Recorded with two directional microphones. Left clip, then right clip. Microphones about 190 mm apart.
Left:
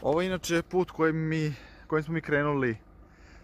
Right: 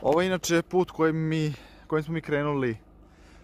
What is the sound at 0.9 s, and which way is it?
Speech, 10° right (ahead or behind).